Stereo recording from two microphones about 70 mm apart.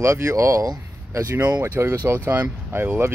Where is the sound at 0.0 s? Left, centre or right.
Right.